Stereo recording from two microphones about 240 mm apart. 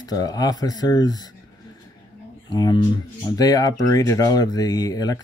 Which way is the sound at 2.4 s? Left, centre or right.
Centre.